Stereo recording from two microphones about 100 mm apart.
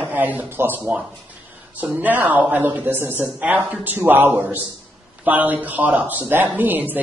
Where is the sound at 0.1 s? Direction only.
20° right (ahead or behind).